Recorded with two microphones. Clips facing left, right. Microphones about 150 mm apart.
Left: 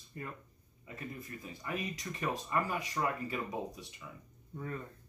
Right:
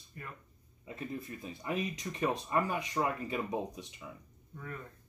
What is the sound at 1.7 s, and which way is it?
Speech, 25° right (ahead or behind).